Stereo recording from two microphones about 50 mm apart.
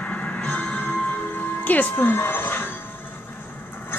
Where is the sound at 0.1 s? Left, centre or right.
Left.